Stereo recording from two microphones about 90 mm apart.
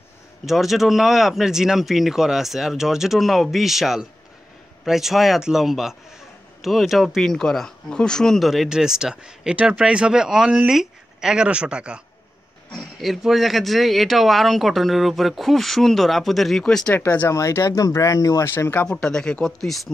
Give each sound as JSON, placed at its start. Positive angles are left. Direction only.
{"t": 0.5, "sound": "speech", "side_deg": 0}
{"t": 17.3, "sound": "speech", "side_deg": 35}
{"t": 18.9, "sound": "speech", "side_deg": 10}